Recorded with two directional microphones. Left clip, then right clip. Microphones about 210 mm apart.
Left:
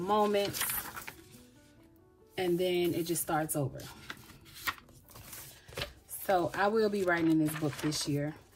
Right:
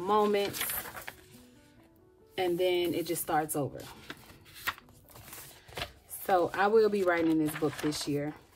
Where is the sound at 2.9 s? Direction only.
50° right (ahead or behind).